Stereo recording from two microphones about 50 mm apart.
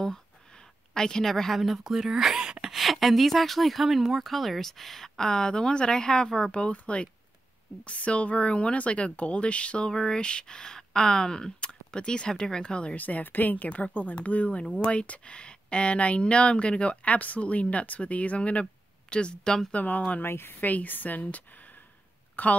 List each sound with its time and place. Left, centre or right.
0.9 s speech: centre
2.7 s speech: centre
12.9 s speech: left; by 19.7 s centre
19.7 s speech: left
20.2 s speech: left
20.6 s speech: left
22.3 s a sound: left